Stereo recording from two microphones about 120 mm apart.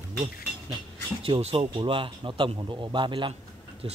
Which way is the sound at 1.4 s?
60° right (ahead or behind).